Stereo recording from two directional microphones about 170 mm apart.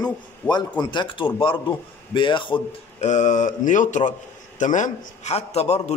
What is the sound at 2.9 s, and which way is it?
A man's voice, 45° left (ahead or behind).